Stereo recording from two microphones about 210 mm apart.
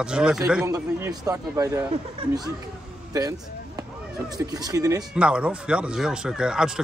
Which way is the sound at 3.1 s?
15° right (ahead or behind).